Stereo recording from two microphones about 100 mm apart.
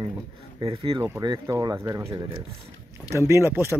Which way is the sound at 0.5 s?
65° right (ahead or behind).